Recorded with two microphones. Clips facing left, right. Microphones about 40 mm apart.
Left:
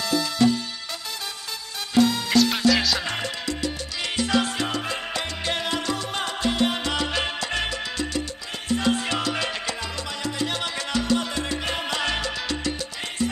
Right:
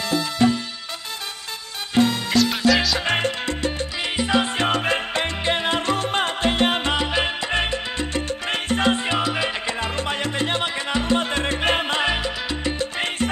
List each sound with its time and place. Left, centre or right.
0.1 s music: right
2.2 s music: centre
3.1 s salsa music: right
4.0 s music: right
4.6 s salsa music: right
5.8 s music: right
6.9 s salsa music: right
8.3 s music: right
9.0 s music: right
9.8 s music: right
12.1 s salsa music: centre
12.7 s salsa music: right